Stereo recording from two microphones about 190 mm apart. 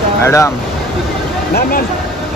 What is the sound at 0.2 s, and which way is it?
Speech, 15° left (ahead or behind).